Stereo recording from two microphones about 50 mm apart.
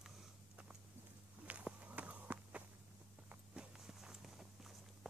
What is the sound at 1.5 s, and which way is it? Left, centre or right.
Walk, right.